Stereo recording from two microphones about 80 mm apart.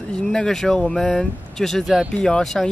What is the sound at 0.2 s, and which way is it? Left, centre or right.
Speech, centre.